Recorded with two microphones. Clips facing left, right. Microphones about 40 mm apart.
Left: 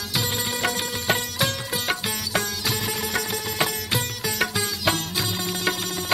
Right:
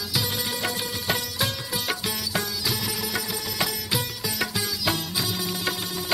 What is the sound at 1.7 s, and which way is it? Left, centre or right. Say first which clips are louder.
Music: left 2 dB; centre.